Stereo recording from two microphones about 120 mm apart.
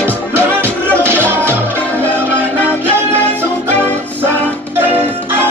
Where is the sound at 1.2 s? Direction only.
20° right (ahead or behind).